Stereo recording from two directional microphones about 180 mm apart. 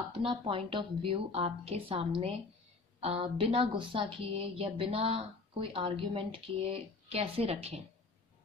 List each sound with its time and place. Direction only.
0.5 s a woman's voice: 30° right (ahead or behind)